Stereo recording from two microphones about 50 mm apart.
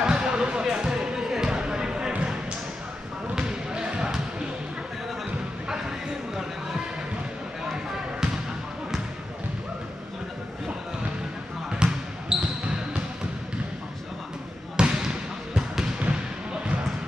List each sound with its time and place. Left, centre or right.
0.0 s basketball bounce: centre
3.3 s basketball bounce: centre
5.7 s a sound: centre
7.7 s basketball bounce: centre
11.7 s basketball bounce: centre
14.8 s basketball bounce: centre